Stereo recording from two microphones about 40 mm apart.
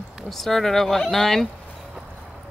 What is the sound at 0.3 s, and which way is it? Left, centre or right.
Speech, centre.